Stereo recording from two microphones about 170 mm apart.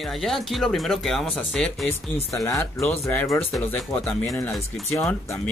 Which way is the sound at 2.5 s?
15° left (ahead or behind).